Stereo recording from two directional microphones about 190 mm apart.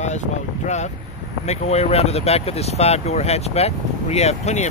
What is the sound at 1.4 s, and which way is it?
Speech, 35° left (ahead or behind).